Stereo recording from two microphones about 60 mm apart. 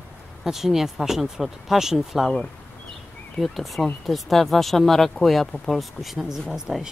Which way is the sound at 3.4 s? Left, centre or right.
Centre.